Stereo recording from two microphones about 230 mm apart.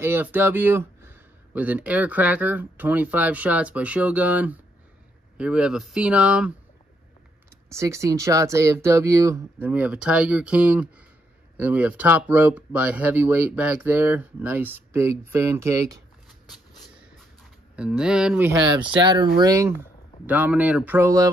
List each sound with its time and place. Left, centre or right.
0.0 s speech: centre
7.7 s speech: centre
16.4 s a sound: centre
17.7 s speech: centre
18.9 s speech: centre